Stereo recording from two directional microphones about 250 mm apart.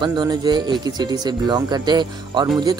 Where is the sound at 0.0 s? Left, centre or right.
Centre.